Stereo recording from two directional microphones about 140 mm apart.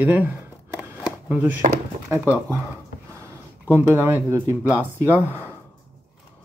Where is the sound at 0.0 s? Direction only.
15° right (ahead or behind).